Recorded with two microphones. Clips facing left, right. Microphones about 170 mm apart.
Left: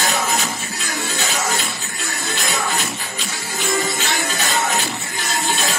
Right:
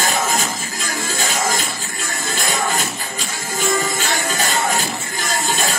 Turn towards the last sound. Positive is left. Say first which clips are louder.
# right 1 dB
turn(degrees=-40)  # may be behind; listen again after turning